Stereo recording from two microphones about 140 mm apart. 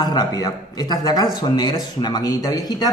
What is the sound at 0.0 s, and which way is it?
A man's voice, 30° left (ahead or behind).